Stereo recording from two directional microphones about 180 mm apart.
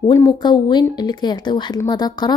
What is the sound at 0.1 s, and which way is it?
A woman's voice, 25° left (ahead or behind).